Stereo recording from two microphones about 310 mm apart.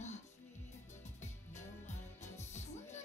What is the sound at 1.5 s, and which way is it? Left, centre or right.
Music, left.